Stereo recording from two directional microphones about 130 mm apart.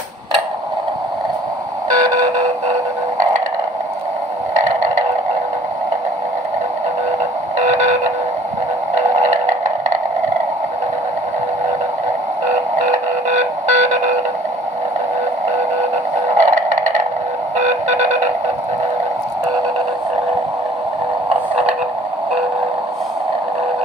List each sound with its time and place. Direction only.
7.5 s radio: 65° right (ahead or behind)
13.3 s train: 70° right (ahead or behind)
16.3 s a sound: 70° right (ahead or behind)
17.6 s radio: 65° right (ahead or behind)